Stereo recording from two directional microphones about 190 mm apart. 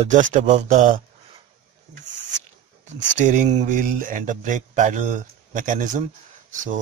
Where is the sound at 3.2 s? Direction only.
40° right (ahead or behind).